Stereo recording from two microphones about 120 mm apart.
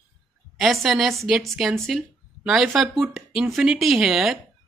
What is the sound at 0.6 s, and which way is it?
A woman's voice, centre (ahead or behind).